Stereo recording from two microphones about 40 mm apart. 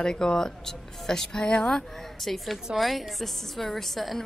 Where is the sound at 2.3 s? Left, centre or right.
Centre.